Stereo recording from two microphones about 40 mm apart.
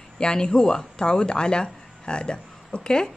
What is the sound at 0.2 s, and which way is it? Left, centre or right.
Speech, centre.